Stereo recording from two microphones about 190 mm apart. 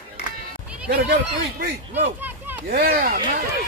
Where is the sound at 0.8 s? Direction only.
55° right (ahead or behind).